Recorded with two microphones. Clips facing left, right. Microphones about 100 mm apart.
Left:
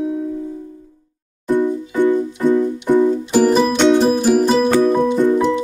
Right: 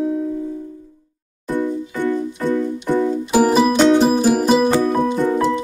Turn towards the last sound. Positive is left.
turn(degrees=0)  # may be behind; listen again after turning